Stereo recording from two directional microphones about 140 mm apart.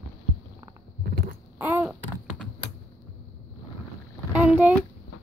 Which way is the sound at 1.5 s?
15° right (ahead or behind).